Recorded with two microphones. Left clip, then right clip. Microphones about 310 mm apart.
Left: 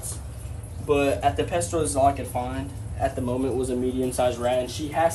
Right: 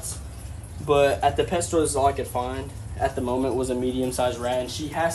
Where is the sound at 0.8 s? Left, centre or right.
Right.